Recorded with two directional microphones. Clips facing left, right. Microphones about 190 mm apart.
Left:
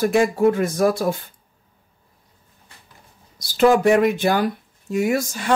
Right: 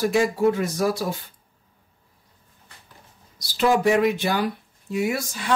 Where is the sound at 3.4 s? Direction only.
50° left (ahead or behind).